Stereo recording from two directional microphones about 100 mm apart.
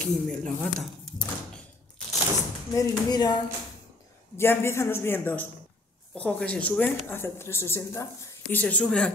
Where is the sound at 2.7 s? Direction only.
40° left (ahead or behind).